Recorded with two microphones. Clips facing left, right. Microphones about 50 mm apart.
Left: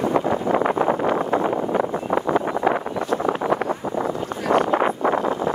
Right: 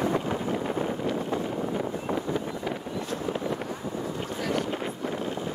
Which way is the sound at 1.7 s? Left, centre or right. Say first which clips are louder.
Left 8 dB; left.